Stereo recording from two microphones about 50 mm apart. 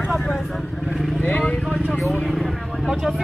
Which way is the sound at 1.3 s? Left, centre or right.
Left.